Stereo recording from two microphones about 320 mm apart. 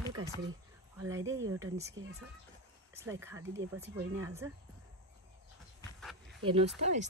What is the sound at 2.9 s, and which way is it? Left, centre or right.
Speech, centre.